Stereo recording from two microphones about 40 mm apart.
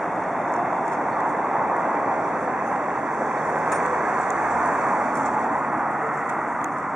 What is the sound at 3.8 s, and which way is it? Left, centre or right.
Vehicle, centre.